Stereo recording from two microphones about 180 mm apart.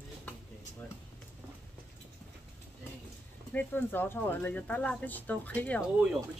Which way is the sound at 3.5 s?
10° left (ahead or behind).